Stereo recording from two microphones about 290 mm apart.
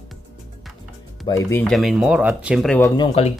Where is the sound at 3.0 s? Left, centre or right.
Centre.